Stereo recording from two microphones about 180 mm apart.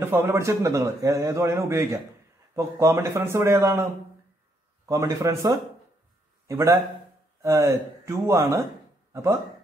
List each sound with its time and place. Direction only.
0.0 s a man's voice: 15° right (ahead or behind)
4.8 s a man's voice: 15° right (ahead or behind)